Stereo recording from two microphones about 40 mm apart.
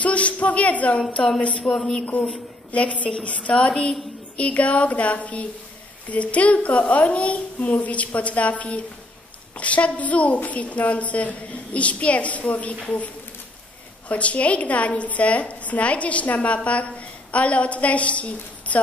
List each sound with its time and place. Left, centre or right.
0.0 s a woman's voice: left
2.7 s a woman's voice: left